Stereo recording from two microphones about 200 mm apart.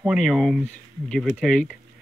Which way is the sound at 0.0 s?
Centre (ahead or behind).